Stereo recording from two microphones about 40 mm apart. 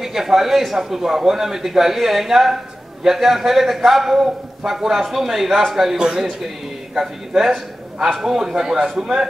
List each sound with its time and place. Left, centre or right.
0.0 s a man's voice: centre
6.0 s a man's voice: right